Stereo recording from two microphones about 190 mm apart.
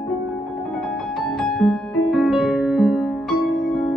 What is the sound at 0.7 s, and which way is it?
Music, 5° left (ahead or behind).